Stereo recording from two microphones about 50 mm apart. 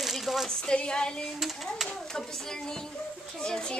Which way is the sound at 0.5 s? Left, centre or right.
Centre.